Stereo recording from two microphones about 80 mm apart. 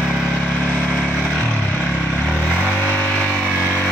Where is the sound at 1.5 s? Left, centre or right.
Centre.